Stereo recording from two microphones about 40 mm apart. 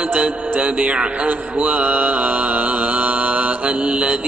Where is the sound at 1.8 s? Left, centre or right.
Right.